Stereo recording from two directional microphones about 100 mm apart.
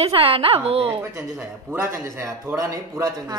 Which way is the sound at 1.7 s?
25° right (ahead or behind).